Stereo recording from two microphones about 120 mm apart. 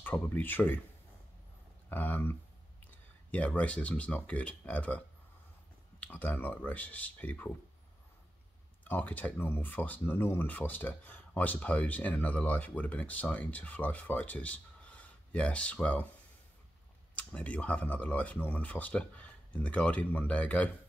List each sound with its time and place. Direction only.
0.0 s speech: 15° left (ahead or behind)
1.9 s speech: 15° left (ahead or behind)
8.8 s speech: 15° left (ahead or behind)